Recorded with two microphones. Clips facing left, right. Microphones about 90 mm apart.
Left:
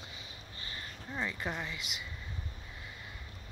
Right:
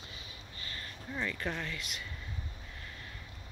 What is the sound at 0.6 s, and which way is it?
Speech, 20° left (ahead or behind).